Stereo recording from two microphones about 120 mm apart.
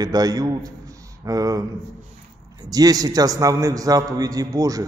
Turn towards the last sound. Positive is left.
turn(degrees=-30)  # may be behind; listen again after turning